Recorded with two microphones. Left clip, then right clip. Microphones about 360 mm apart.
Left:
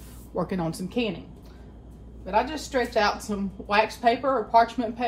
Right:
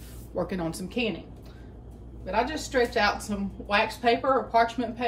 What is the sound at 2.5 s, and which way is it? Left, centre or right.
A woman's voice, centre.